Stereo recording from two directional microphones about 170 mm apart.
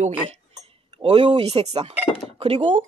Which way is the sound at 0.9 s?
35° right (ahead or behind).